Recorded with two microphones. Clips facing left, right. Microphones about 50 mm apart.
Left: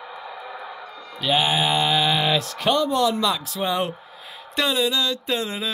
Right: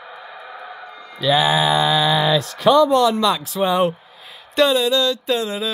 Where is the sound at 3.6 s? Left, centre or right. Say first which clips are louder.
Right 6 dB; centre.